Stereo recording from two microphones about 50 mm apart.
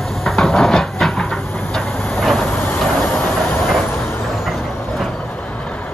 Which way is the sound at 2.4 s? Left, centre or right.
Left.